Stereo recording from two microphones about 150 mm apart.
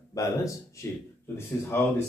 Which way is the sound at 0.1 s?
20° left (ahead or behind).